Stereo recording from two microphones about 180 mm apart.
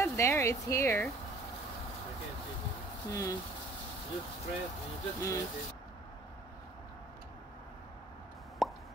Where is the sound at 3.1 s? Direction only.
20° left (ahead or behind).